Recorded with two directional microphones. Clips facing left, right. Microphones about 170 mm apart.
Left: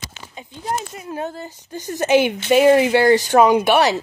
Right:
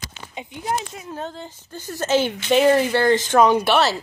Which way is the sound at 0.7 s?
Centre (ahead or behind).